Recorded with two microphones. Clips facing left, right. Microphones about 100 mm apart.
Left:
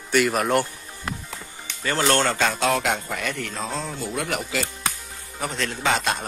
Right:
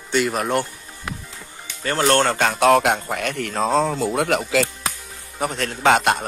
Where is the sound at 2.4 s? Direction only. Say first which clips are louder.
Right 6 dB; 60° right (ahead or behind).